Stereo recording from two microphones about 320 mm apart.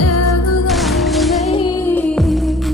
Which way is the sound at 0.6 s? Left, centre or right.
Centre.